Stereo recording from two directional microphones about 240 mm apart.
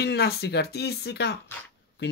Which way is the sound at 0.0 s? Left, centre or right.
Left.